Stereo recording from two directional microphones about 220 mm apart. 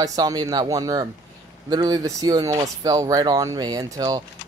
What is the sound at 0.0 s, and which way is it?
Speech, 15° right (ahead or behind).